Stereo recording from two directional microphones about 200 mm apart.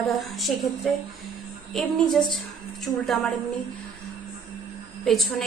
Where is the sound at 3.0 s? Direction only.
Centre (ahead or behind).